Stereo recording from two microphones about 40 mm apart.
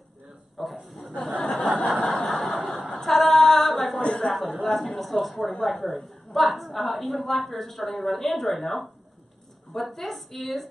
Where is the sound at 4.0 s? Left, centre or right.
Left.